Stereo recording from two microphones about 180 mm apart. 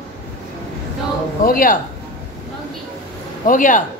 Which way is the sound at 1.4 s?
50° left (ahead or behind).